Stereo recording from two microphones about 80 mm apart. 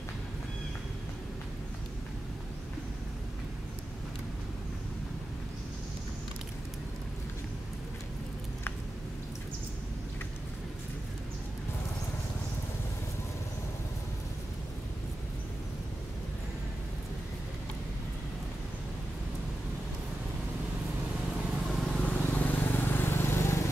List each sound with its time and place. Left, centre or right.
21.3 s vehicle: centre; by 23.7 s left